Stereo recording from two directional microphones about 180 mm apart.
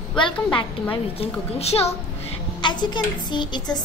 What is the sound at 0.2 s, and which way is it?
A child's voice, 25° left (ahead or behind).